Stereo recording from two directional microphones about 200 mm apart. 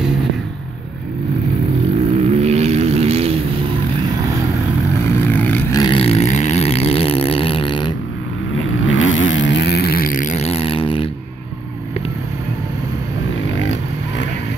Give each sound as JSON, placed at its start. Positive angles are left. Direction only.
{"t": 2.1, "sound": "vehicle", "side_deg": -35}
{"t": 5.3, "sound": "vehicle", "side_deg": 10}
{"t": 5.8, "sound": "a sound", "side_deg": 25}
{"t": 8.5, "sound": "vehicle", "side_deg": 80}